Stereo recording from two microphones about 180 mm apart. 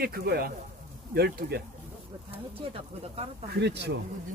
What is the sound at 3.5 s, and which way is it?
Speech, 70° right (ahead or behind).